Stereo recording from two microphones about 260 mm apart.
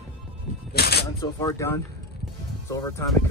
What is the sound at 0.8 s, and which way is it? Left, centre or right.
Speech, left.